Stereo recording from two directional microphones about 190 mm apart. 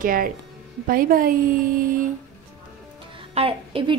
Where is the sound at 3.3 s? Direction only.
30° right (ahead or behind).